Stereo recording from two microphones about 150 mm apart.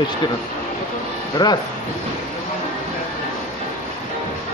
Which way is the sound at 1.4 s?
30° left (ahead or behind).